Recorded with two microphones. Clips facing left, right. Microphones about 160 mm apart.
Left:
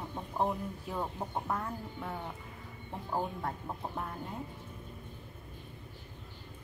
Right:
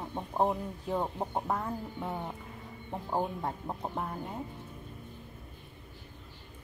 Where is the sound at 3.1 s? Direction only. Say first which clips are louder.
Right 2 dB; 20° right (ahead or behind).